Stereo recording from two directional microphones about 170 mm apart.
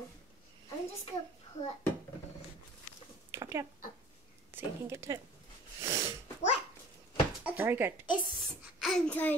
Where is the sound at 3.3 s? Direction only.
15° right (ahead or behind).